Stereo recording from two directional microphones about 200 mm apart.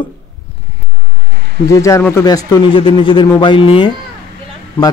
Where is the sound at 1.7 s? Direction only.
15° left (ahead or behind).